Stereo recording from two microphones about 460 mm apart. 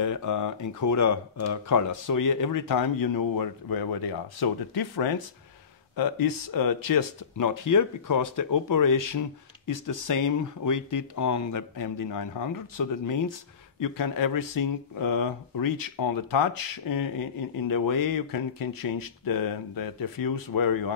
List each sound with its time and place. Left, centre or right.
0.0 s speech: left